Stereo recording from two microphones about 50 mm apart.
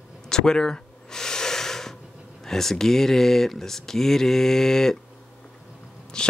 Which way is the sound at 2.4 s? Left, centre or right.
Centre.